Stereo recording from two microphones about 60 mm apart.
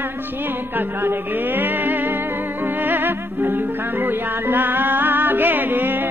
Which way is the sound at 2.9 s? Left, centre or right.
Right.